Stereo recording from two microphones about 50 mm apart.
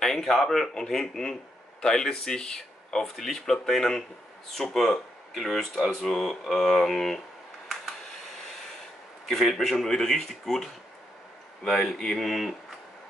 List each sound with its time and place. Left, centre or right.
0.0 s speech: centre
9.2 s speech: centre